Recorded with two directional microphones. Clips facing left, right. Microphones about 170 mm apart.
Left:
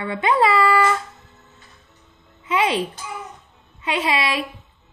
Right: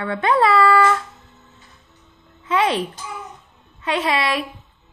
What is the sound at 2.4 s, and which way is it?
Speech, 5° left (ahead or behind).